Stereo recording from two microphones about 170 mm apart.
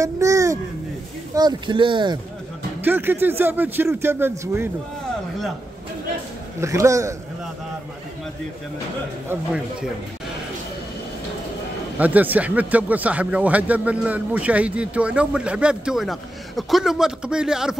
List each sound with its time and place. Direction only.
0.0 s speech: 20° right (ahead or behind)
2.8 s speech: 10° right (ahead or behind)
6.6 s speech: 15° right (ahead or behind)
9.3 s speech: 5° right (ahead or behind)
12.0 s speech: 10° right (ahead or behind)